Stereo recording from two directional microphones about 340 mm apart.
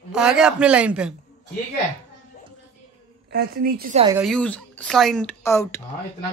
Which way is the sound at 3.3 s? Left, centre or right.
Right.